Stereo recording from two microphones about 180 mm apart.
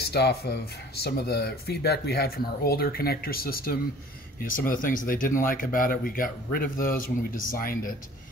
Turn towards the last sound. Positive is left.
turn(degrees=50)  # may be behind; listen again after turning